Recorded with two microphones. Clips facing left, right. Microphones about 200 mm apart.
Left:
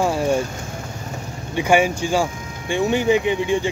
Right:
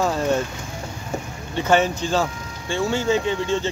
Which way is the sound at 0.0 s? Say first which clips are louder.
Left 2 dB; 10° left (ahead or behind).